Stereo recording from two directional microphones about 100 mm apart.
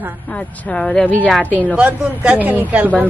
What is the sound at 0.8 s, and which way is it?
Speech, 5° left (ahead or behind).